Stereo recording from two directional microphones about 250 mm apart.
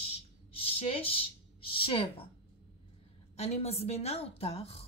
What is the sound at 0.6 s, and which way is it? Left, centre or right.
Speech, left.